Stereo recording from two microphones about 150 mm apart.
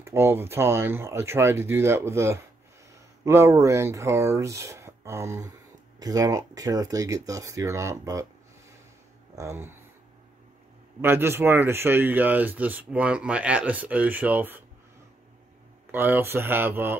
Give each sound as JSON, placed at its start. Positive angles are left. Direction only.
{"t": 0.0, "sound": "speech", "side_deg": -15}
{"t": 9.3, "sound": "speech", "side_deg": -20}
{"t": 11.0, "sound": "speech", "side_deg": -15}
{"t": 15.9, "sound": "speech", "side_deg": -15}